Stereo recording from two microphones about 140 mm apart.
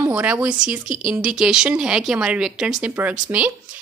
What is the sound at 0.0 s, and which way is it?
Speech, 10° right (ahead or behind).